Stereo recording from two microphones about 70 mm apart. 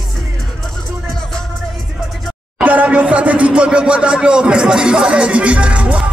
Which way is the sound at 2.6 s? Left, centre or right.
Right.